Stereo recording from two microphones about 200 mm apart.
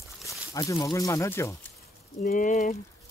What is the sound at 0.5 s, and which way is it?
Speech, 15° left (ahead or behind).